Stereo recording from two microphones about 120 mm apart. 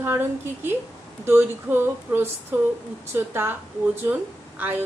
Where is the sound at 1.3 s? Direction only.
15° right (ahead or behind).